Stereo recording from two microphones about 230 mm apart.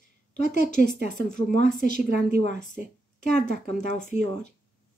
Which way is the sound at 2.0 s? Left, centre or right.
Right.